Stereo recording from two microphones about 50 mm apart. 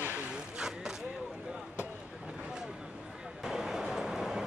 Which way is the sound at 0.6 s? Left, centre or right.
Centre.